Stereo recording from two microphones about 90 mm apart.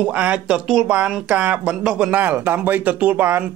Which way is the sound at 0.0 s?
15° right (ahead or behind).